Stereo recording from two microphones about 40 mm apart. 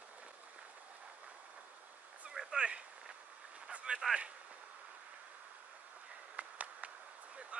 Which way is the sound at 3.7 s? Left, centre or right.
Right.